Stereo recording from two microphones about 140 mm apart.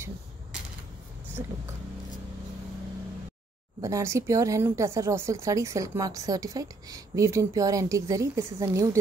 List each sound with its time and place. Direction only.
3.8 s speech: 20° right (ahead or behind)